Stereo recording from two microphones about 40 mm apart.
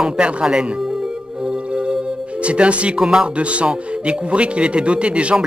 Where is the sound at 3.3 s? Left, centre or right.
Right.